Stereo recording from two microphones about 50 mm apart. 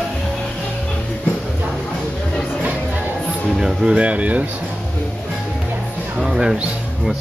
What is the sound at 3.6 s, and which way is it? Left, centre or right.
Speech, centre.